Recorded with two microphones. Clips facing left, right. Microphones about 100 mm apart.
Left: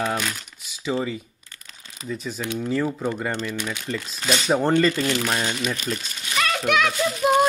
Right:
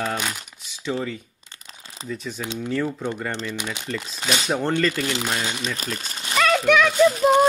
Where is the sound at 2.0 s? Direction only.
30° right (ahead or behind).